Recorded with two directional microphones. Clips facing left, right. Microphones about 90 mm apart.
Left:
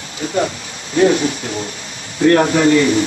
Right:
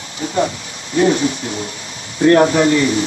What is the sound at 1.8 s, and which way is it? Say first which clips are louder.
A man's voice: even; 30° right (ahead or behind).